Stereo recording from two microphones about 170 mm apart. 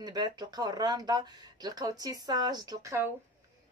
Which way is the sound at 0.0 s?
25° right (ahead or behind).